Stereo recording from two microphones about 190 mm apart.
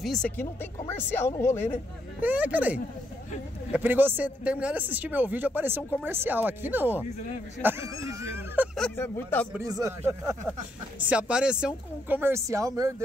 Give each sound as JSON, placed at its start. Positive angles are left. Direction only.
{"t": 0.0, "sound": "speech", "side_deg": 0}
{"t": 0.4, "sound": "speech", "side_deg": 10}
{"t": 2.2, "sound": "speech", "side_deg": -10}
{"t": 8.7, "sound": "speech", "side_deg": 10}
{"t": 9.6, "sound": "speech", "side_deg": -15}
{"t": 11.0, "sound": "speech", "side_deg": -5}